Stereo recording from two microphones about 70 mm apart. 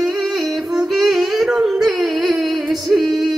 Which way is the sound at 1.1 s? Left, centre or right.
Centre.